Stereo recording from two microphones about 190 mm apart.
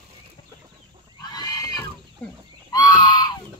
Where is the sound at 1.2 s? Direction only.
20° left (ahead or behind).